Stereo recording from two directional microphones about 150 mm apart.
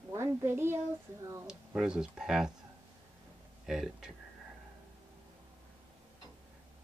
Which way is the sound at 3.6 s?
5° right (ahead or behind).